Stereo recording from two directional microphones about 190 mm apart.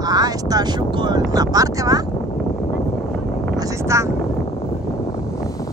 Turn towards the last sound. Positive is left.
turn(degrees=-15)  # may be behind; listen again after turning